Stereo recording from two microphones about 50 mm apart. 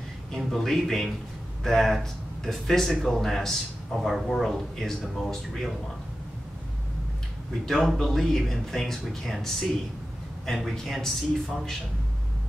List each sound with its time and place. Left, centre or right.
0.3 s a man's voice: centre
7.6 s a man's voice: centre